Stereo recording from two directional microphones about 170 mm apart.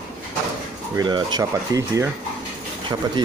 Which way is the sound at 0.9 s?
25° right (ahead or behind).